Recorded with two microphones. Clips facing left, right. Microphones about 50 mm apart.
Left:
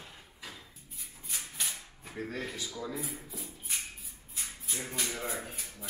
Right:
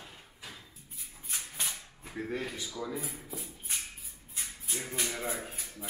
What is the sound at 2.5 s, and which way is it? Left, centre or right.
Speech, centre.